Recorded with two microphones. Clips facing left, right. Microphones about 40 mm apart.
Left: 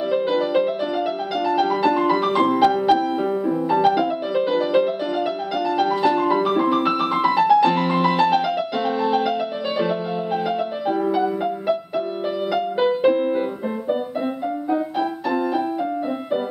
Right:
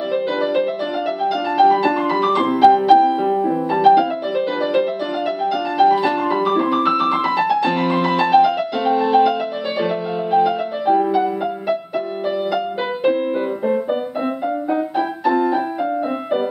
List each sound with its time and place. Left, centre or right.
0.1 s music: centre
12.8 s music: centre
15.2 s music: centre